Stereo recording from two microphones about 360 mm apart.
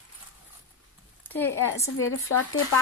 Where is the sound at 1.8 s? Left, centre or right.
Left.